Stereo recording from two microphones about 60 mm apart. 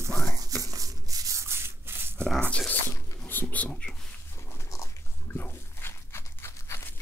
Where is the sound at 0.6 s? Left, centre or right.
Right.